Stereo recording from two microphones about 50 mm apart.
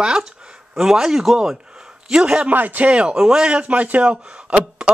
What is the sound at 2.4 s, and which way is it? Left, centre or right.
Speech, right.